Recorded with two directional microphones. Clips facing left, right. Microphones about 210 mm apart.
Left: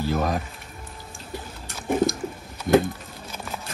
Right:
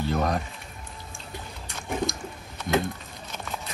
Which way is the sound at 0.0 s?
5° left (ahead or behind).